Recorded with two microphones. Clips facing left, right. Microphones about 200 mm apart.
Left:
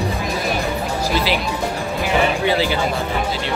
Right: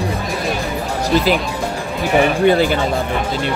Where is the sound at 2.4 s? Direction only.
50° right (ahead or behind).